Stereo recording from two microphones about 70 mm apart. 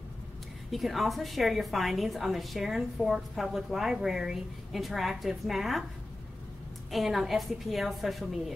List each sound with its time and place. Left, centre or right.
0.7 s a woman's voice: centre
6.9 s a woman's voice: centre